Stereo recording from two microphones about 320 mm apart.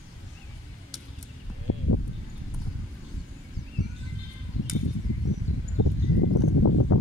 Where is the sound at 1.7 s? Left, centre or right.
Left.